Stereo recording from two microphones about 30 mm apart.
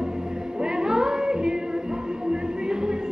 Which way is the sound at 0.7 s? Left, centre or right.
Right.